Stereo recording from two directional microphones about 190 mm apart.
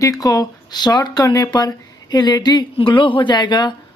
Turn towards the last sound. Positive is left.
turn(degrees=25)  # may be behind; listen again after turning